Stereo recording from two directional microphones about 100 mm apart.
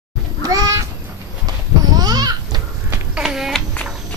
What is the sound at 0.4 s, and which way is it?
Cat, 35° right (ahead or behind).